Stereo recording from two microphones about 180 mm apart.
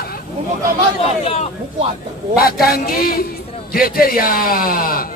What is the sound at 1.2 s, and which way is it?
Speech, 35° left (ahead or behind).